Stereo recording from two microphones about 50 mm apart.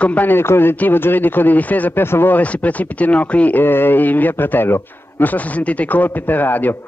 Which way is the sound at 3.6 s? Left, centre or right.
Left.